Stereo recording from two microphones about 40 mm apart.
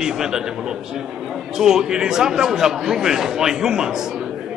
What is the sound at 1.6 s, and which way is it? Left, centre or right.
Speech, centre.